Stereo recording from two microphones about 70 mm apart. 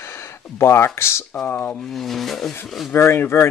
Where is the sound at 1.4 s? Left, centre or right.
Left.